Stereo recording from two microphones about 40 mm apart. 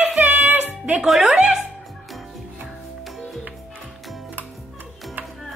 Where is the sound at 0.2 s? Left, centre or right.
Right.